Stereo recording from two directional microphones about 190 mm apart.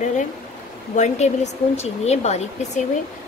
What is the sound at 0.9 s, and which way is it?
Speech, 35° left (ahead or behind).